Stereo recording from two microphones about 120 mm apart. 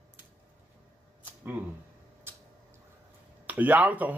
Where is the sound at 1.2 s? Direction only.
15° right (ahead or behind).